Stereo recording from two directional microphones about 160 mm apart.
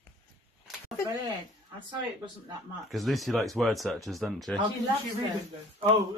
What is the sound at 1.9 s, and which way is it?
Speech, 30° right (ahead or behind).